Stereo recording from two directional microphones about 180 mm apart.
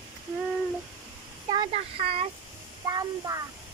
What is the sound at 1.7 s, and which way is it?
Speech, 30° right (ahead or behind).